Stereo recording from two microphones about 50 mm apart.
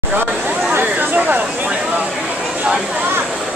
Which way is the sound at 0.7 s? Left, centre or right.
Right.